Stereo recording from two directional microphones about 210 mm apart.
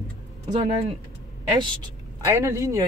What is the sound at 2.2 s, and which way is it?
Speech, 15° right (ahead or behind).